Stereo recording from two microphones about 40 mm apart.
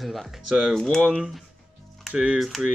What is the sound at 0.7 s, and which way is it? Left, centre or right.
Speech, centre.